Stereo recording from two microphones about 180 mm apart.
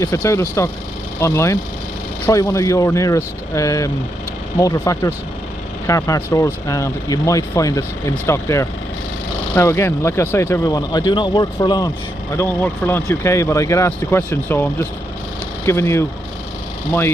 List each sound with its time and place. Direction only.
0.0 s speech: 15° left (ahead or behind)